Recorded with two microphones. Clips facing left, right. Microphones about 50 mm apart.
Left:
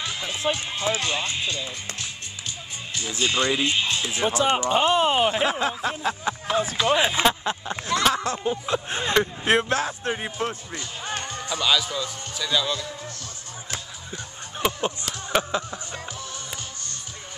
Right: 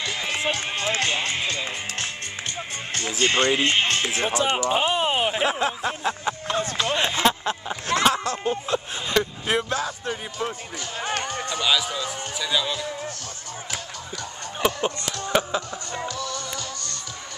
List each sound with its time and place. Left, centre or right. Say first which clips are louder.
0.0 s run: right 1 dB; right
0.9 s speech: right 2 dB; right
3.2 s speech: right 2 dB; right
4.3 s speech: left 3 dB; centre
8.3 s a man's voice: even; left
9.1 s a man's voice: left 1 dB; left
9.5 s speech: left 3 dB; left
9.8 s a man's voice: left 2 dB; left
11.0 s run: right 5 dB; right
11.6 s speech: left 1 dB; centre
14.6 s a sound: right 2 dB; centre
15.2 s speech: right 1 dB; centre
16.2 s music: right 5 dB; right